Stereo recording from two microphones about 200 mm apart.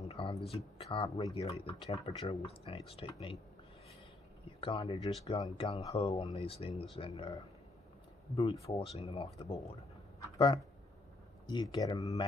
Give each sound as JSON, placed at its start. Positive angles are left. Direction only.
{"t": 0.1, "sound": "a sound", "side_deg": 25}
{"t": 0.5, "sound": "speech", "side_deg": 30}
{"t": 4.5, "sound": "speech", "side_deg": 25}